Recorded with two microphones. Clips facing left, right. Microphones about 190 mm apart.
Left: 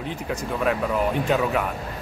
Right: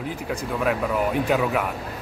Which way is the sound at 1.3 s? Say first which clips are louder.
Even; 5° right (ahead or behind).